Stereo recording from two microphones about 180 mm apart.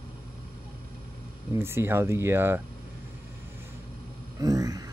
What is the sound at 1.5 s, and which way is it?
Speech, 15° right (ahead or behind).